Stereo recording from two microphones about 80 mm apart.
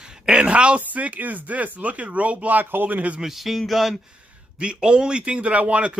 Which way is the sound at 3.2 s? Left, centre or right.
Centre.